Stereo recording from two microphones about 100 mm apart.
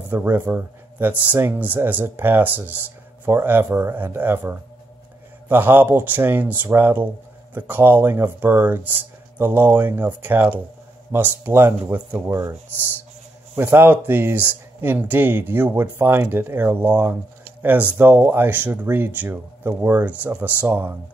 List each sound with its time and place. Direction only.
0.1 s speech: 20° right (ahead or behind)
12.3 s speech: 35° right (ahead or behind)
13.6 s speech: 25° right (ahead or behind)